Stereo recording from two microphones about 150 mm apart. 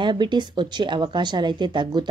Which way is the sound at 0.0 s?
30° right (ahead or behind).